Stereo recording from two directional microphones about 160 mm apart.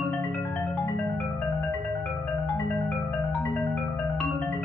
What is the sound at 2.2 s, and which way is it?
Music, 5° left (ahead or behind).